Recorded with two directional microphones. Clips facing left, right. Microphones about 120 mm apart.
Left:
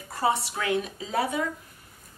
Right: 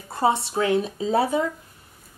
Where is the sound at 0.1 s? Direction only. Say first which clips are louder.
Right 4 dB; 25° right (ahead or behind).